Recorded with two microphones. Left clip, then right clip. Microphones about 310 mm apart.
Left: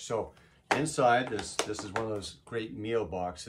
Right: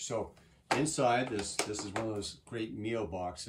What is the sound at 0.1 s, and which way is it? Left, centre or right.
Speech, centre.